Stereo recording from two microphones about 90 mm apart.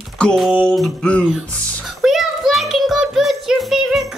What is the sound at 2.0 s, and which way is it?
Child singing, 5° right (ahead or behind).